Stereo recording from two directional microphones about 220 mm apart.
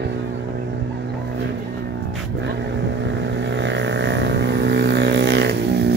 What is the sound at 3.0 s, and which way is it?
Vehicle, 55° right (ahead or behind).